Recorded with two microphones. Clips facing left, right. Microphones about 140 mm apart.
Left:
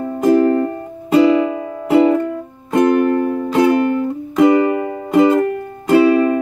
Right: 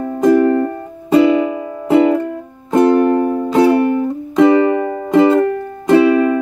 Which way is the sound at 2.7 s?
30° right (ahead or behind).